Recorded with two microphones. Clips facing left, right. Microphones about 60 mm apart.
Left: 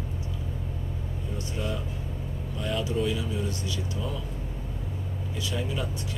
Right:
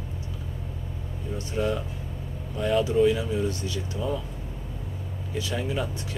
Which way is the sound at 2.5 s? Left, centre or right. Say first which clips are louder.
Right 7 dB; right.